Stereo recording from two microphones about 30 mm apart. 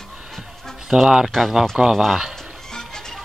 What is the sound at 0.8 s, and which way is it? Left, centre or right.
A man's voice, centre.